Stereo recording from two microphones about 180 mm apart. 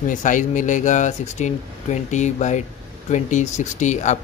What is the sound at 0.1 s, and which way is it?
Speech, 45° left (ahead or behind).